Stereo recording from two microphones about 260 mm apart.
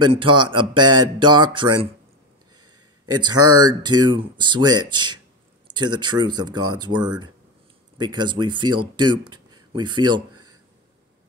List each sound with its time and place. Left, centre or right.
0.0 s speech: centre
3.1 s speech: centre
10.3 s a sound: right